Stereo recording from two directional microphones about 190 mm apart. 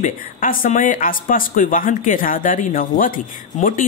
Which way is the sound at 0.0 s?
45° left (ahead or behind).